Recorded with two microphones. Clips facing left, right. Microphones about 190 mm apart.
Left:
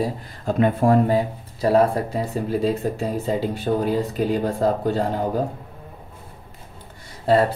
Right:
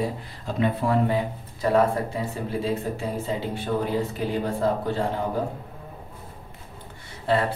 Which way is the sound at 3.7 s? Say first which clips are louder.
Left 4 dB; 40° left (ahead or behind).